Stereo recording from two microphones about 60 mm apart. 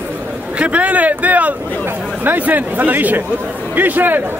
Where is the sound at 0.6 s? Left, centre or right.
Right.